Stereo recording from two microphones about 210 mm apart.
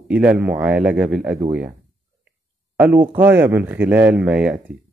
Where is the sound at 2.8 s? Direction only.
10° right (ahead or behind).